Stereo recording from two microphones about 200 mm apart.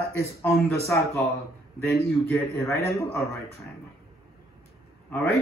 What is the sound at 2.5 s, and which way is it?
Speech, 15° left (ahead or behind).